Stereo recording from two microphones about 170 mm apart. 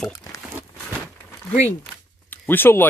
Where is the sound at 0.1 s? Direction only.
20° left (ahead or behind).